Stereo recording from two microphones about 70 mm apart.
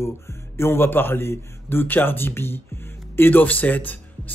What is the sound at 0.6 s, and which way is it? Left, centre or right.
A man's voice, left.